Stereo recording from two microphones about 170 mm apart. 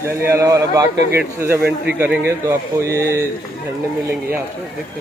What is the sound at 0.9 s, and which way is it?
Speech, 85° right.